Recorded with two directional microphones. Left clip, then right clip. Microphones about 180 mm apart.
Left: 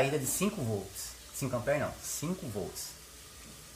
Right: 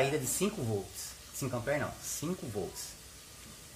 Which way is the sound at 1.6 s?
20° right (ahead or behind).